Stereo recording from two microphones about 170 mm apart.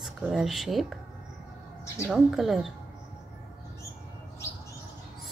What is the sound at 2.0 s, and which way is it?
Speech, centre (ahead or behind).